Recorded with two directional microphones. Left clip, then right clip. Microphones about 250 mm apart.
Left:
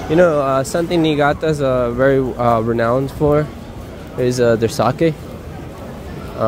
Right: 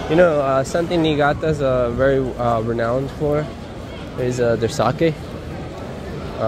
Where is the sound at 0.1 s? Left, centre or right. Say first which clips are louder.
Left 2 dB; left.